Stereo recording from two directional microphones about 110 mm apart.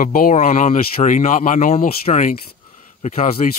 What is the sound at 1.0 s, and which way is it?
Speech, 55° left (ahead or behind).